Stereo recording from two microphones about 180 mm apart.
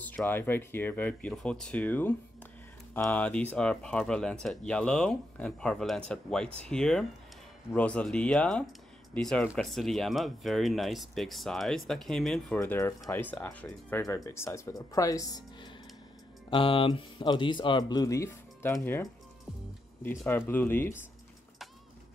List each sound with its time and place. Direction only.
0.0 s speech: 10° left (ahead or behind)
12.5 s speech: 15° left (ahead or behind)